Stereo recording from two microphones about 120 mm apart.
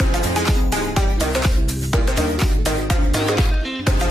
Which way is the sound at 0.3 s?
Centre (ahead or behind).